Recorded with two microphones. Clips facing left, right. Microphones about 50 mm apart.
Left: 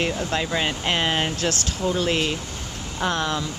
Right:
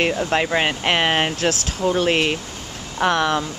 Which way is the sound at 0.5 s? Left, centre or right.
Right.